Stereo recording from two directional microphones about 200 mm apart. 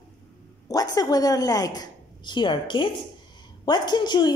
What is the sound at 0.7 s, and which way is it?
A woman's voice, 20° left (ahead or behind).